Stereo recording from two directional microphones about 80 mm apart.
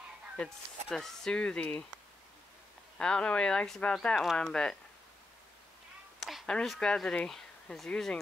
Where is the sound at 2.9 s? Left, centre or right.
Centre.